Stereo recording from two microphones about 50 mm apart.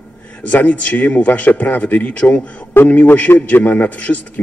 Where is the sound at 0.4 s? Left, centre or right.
Left.